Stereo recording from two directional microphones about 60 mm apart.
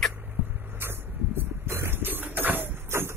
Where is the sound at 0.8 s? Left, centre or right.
Right.